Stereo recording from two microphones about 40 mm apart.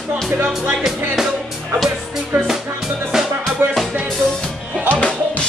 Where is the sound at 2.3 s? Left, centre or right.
Right.